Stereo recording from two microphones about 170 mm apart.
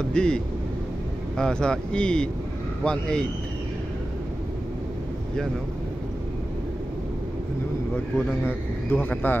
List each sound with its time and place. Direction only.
0.0 s speech: 5° left (ahead or behind)
1.4 s speech: 5° left (ahead or behind)
8.5 s speech: 10° left (ahead or behind)